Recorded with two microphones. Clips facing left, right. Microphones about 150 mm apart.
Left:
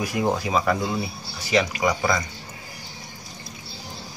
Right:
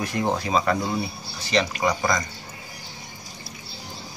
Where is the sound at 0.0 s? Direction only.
5° left (ahead or behind).